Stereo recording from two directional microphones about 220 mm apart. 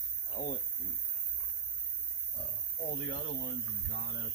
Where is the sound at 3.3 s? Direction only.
45° left (ahead or behind).